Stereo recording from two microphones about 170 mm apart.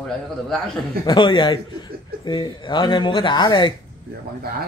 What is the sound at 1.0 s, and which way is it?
Speech, 25° left (ahead or behind).